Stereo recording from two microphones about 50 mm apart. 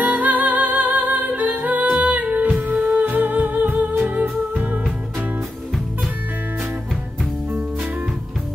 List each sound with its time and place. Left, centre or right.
0.0 s music: right